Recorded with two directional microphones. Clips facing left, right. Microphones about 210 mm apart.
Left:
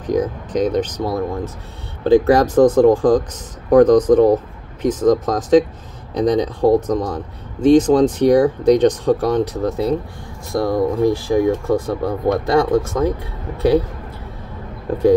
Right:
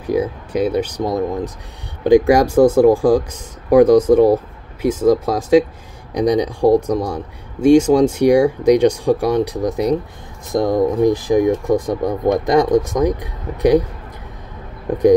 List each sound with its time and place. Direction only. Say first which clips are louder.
0.0 s speech: even; 10° right (ahead or behind)